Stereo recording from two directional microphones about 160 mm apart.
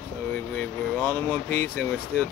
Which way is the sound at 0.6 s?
10° left (ahead or behind).